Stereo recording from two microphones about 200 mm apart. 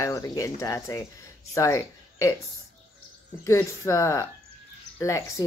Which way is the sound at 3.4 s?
15° left (ahead or behind).